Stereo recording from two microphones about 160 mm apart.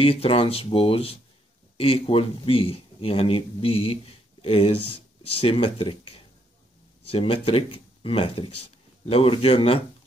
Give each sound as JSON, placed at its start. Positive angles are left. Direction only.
{"t": 0.0, "sound": "speech", "side_deg": 35}